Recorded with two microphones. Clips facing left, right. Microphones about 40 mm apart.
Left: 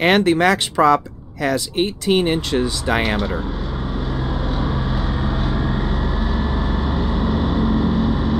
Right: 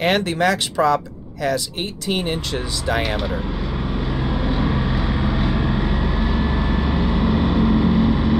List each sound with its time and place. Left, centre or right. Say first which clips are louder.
0.0 s speech: left 4 dB; left
4.1 s vehicle: right 2 dB; centre